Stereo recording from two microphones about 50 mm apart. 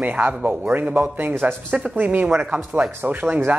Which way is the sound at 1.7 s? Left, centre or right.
Centre.